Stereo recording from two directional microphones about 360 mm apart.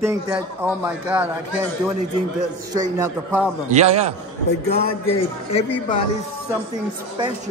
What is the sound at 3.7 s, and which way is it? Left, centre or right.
Speech, centre.